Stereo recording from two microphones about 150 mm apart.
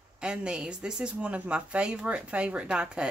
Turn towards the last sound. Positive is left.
turn(degrees=-5)  # may be behind; listen again after turning